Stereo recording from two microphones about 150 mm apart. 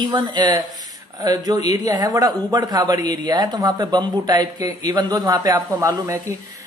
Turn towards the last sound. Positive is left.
turn(degrees=-20)  # may be behind; listen again after turning